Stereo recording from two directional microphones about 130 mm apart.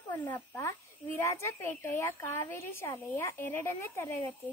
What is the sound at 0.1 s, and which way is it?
A child's voice, 15° left (ahead or behind).